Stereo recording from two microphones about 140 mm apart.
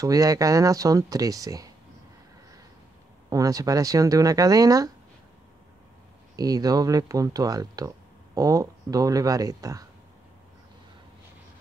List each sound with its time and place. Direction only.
0.0 s speech: 25° right (ahead or behind)
3.3 s speech: 25° right (ahead or behind)
6.3 s speech: 25° right (ahead or behind)